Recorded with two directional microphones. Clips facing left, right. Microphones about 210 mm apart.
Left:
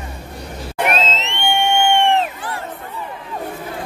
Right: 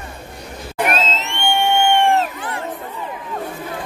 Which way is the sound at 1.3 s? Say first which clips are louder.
Right 1 dB; 20° left (ahead or behind).